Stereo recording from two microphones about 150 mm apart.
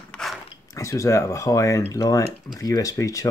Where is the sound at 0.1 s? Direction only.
Centre (ahead or behind).